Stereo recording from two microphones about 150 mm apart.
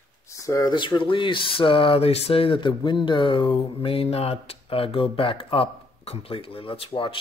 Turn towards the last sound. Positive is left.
turn(degrees=35)  # may be behind; listen again after turning